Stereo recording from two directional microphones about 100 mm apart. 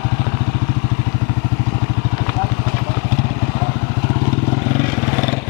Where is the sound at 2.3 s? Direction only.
20° left (ahead or behind).